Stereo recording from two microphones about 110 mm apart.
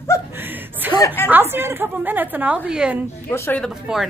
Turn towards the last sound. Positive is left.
turn(degrees=-5)  # may be behind; listen again after turning